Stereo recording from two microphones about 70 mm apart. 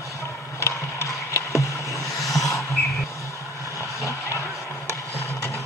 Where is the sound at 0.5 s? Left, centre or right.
Left.